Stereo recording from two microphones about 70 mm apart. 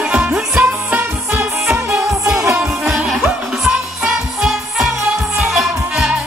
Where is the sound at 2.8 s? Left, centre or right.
Centre.